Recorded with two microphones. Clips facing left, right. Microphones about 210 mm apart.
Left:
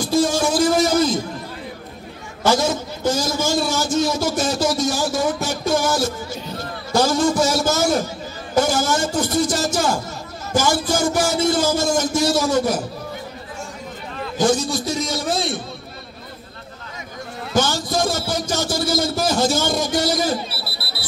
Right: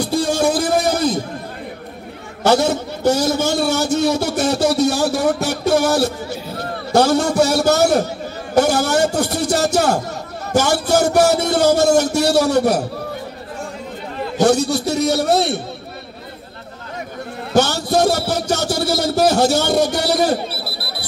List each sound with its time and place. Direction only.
0.0 s music: 60° right (ahead or behind)
2.4 s a man's voice: 65° right (ahead or behind)
14.4 s a man's voice: 65° right (ahead or behind)
17.5 s speech: 65° right (ahead or behind)